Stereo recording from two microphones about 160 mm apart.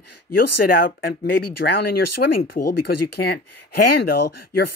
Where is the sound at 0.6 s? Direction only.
65° left (ahead or behind).